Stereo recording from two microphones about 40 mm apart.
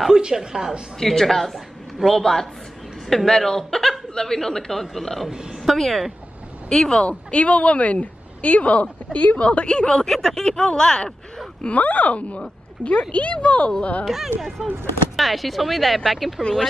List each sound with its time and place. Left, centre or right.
0.1 s a woman's voice: centre
0.9 s a woman's voice: centre
6.7 s speech: centre
7.1 s speech: left
9.4 s a woman's voice: left
11.7 s speech: left
14.0 s a woman's voice: centre